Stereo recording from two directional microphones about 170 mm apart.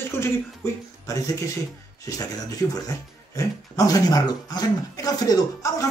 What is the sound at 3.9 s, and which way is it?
Speech, 20° left (ahead or behind).